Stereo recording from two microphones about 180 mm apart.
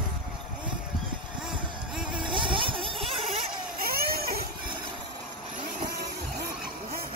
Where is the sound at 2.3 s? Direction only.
25° right (ahead or behind).